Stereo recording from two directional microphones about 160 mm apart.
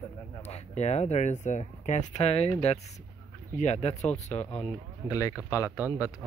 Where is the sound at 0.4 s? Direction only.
40° left (ahead or behind).